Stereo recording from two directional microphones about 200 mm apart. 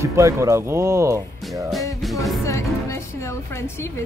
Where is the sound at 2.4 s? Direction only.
15° left (ahead or behind).